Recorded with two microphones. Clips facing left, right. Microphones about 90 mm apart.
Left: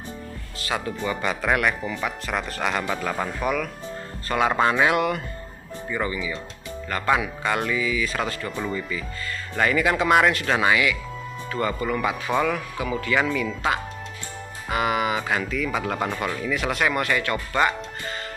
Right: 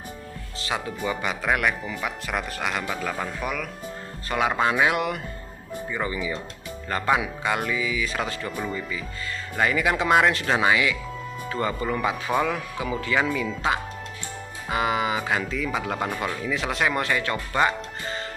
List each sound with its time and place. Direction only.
0.6 s speech: 20° right (ahead or behind)
6.0 s speech: 25° right (ahead or behind)
7.1 s speech: 10° right (ahead or behind)
14.7 s speech: 20° right (ahead or behind)
15.8 s speech: 5° right (ahead or behind)
16.5 s speech: 20° right (ahead or behind)